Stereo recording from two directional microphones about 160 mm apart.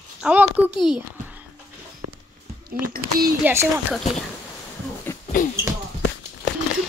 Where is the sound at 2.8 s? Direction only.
70° right (ahead or behind).